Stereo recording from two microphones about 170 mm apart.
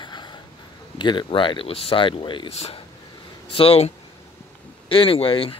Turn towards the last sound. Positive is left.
turn(degrees=30)  # may be behind; listen again after turning